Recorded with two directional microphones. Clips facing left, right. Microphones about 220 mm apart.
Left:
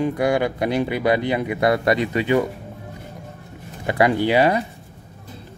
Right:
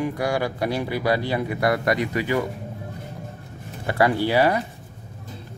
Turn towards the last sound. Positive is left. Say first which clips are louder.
# left 2 dB
turn(degrees=20)  # may be behind; listen again after turning